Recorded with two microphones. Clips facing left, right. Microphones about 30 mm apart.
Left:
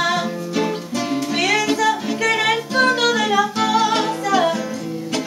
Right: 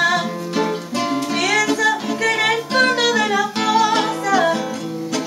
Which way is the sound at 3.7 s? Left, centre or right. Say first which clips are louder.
Right 1 dB; right.